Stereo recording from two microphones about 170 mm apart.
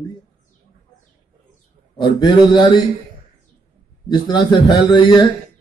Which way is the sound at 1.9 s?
25° left (ahead or behind).